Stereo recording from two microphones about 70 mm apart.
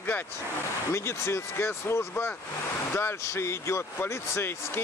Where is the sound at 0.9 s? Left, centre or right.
Left.